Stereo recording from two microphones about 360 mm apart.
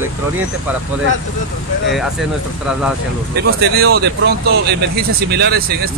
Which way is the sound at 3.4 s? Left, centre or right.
Right.